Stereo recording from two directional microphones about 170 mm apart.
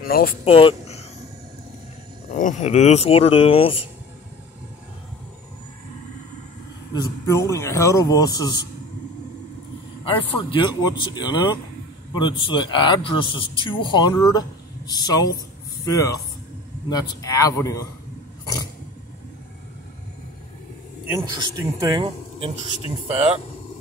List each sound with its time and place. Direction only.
0.0 s speech: 60° left (ahead or behind)
0.5 s speech: 35° left (ahead or behind)
2.3 s speech: 45° left (ahead or behind)
6.9 s speech: 20° left (ahead or behind)
10.3 s speech: 30° left (ahead or behind)
21.3 s speech: 25° right (ahead or behind)
22.0 s speech: 35° right (ahead or behind)